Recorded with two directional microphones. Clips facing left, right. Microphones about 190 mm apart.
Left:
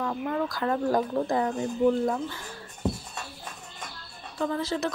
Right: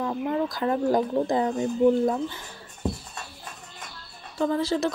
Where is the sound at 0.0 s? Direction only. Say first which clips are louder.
Right 2 dB; 20° right (ahead or behind).